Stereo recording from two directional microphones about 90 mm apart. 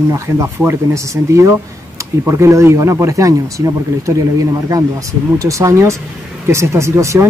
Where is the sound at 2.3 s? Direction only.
30° right (ahead or behind).